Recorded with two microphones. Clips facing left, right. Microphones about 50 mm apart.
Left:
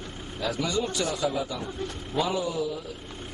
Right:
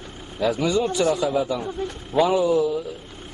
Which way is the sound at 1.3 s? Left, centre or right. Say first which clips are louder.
Right 8 dB; centre.